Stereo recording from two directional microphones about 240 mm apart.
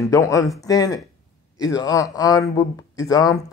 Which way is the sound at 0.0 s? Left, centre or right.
Centre.